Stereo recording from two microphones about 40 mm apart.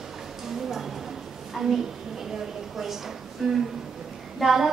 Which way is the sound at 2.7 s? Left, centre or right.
Centre.